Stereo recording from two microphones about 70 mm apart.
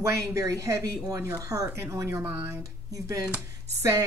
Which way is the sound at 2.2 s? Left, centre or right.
Right.